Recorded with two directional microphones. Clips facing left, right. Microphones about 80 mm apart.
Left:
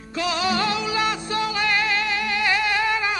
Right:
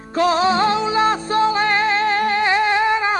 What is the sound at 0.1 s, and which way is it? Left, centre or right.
Music, right.